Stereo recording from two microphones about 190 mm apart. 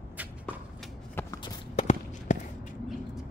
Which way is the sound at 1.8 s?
35° left (ahead or behind).